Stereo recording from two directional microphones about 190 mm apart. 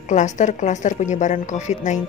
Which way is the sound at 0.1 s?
40° left (ahead or behind).